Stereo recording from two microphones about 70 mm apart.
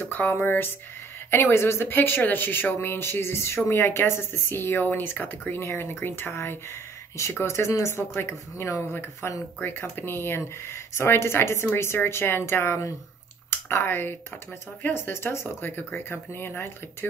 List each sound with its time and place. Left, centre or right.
0.0 s speech: left
9.6 s speech: left